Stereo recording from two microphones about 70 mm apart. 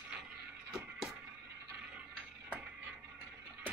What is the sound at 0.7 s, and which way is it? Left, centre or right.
Music, centre.